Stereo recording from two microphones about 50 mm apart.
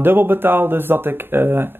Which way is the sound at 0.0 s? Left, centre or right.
Right.